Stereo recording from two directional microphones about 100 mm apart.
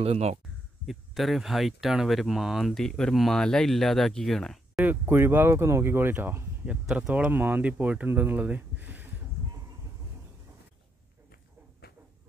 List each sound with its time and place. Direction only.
0.0 s speech: 90° right
0.8 s speech: centre (ahead or behind)
4.7 s speech: 20° right (ahead or behind)